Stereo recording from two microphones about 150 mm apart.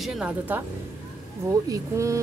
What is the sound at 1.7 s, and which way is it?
Speech, 20° right (ahead or behind).